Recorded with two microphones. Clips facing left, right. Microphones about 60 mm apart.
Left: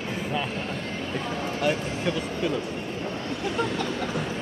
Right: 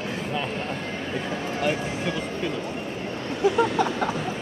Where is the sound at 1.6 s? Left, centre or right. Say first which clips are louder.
Even; centre.